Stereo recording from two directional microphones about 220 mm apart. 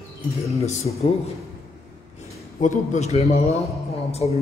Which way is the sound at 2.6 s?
35° left (ahead or behind).